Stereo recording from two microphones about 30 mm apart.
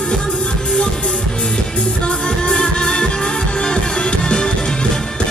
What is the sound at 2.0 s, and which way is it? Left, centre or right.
Music, left.